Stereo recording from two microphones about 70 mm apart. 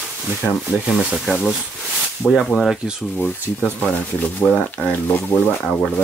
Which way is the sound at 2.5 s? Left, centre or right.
Centre.